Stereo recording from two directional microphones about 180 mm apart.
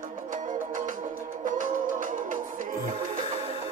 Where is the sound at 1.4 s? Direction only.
45° right (ahead or behind).